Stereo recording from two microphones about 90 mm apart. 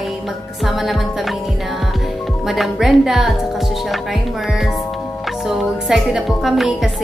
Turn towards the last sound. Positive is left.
turn(degrees=0)  # may be behind; listen again after turning